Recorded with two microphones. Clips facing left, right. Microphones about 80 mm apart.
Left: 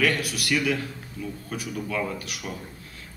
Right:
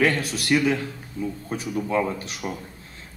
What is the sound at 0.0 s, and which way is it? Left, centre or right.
A man's voice, right.